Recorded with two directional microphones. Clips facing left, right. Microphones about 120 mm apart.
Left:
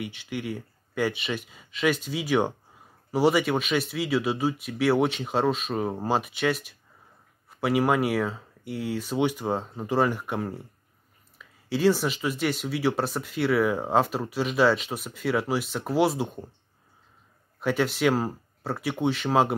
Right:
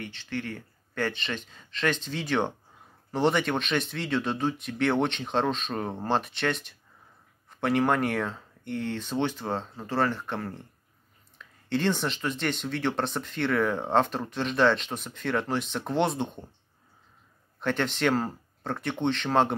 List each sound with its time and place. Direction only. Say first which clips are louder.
0.0 s speech: left 2 dB; 10° left (ahead or behind)
17.6 s speech: left 3 dB; 10° left (ahead or behind)